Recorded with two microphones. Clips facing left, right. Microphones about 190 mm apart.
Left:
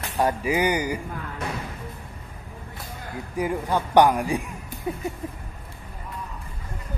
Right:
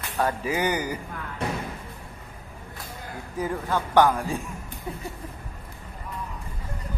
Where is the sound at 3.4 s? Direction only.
15° left (ahead or behind).